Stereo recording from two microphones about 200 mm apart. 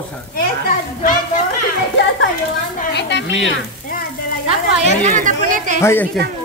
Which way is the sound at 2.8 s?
55° left (ahead or behind).